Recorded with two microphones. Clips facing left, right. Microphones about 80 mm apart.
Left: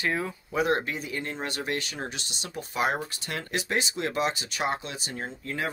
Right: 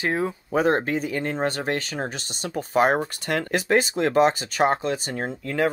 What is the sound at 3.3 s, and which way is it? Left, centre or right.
Speech, right.